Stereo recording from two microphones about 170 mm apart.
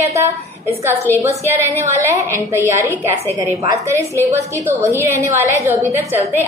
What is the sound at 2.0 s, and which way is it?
A woman's voice, 15° right (ahead or behind).